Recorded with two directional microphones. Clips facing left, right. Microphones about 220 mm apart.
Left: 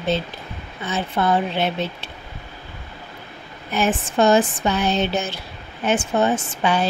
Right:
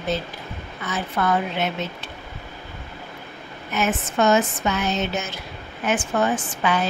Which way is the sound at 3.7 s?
30° left (ahead or behind).